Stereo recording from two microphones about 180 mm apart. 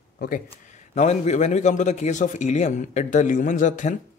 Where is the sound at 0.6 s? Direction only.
40° left (ahead or behind).